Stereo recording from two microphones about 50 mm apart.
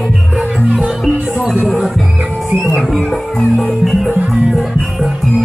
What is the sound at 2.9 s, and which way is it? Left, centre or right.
Music, centre.